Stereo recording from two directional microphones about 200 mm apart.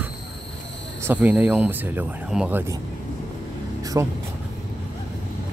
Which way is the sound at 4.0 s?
15° right (ahead or behind).